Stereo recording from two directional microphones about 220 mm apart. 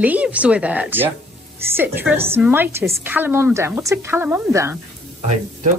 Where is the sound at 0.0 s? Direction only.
5° right (ahead or behind).